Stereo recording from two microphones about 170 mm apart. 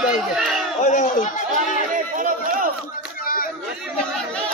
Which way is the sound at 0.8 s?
45° left (ahead or behind).